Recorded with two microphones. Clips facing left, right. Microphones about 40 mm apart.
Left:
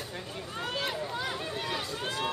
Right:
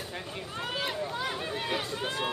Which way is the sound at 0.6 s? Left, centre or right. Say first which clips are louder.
Even; centre.